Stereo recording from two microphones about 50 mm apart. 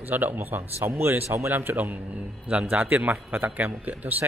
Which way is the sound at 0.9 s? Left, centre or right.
Right.